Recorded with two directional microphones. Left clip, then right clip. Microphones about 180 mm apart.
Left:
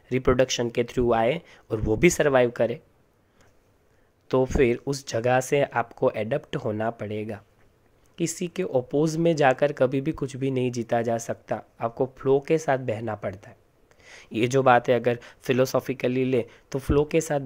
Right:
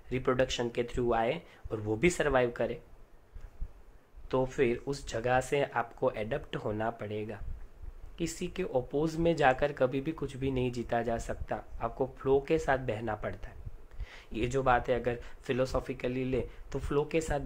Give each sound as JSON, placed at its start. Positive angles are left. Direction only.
{"t": 0.1, "sound": "speech", "side_deg": 40}
{"t": 4.3, "sound": "speech", "side_deg": 40}